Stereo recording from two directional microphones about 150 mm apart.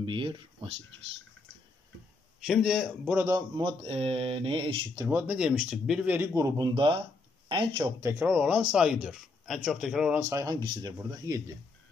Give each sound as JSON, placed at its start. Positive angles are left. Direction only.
{"t": 0.0, "sound": "speech", "side_deg": -35}
{"t": 2.4, "sound": "speech", "side_deg": 0}
{"t": 5.0, "sound": "speech", "side_deg": -10}
{"t": 6.7, "sound": "speech", "side_deg": -35}
{"t": 8.0, "sound": "speech", "side_deg": -15}
{"t": 10.3, "sound": "speech", "side_deg": -25}